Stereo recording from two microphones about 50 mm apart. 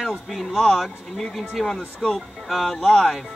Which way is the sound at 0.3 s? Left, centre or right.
Centre.